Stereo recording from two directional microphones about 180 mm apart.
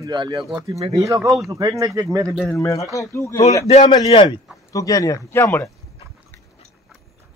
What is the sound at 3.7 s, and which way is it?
A man's voice, 35° left (ahead or behind).